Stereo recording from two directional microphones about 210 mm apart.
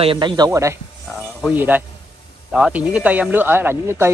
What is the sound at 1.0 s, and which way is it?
Speech, centre (ahead or behind).